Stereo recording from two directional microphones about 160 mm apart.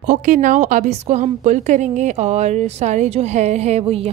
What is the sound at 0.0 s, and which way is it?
A woman's voice, 50° right (ahead or behind).